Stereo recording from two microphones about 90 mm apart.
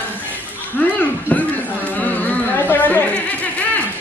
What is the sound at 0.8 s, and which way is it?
Speech, 20° left (ahead or behind).